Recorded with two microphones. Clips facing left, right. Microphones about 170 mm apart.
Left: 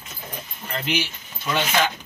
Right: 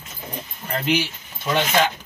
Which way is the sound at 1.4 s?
25° right (ahead or behind).